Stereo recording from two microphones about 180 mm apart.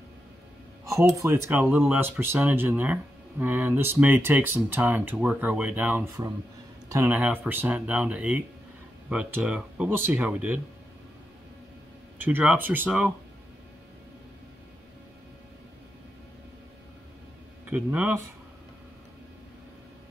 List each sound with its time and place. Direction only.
0.8 s speech: 15° right (ahead or behind)
12.2 s speech: 10° right (ahead or behind)
17.6 s speech: 10° right (ahead or behind)